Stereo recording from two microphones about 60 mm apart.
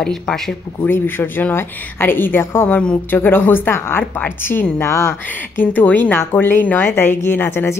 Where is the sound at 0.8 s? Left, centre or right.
Left.